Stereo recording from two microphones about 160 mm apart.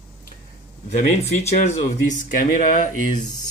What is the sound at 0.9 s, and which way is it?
Speech, 45° left (ahead or behind).